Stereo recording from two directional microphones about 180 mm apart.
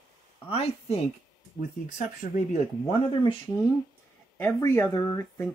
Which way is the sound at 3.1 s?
30° left (ahead or behind).